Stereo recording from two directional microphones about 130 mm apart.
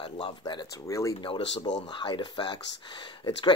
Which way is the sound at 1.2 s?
40° left (ahead or behind).